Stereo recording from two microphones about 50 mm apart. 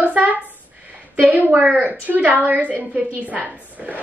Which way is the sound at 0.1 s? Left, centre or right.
Right.